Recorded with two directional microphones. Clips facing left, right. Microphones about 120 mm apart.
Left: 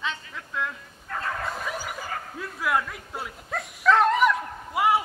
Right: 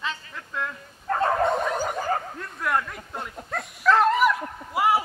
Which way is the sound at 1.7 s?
40° right (ahead or behind).